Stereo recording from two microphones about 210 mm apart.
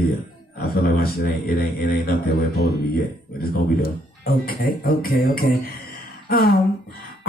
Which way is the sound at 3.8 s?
45° left (ahead or behind).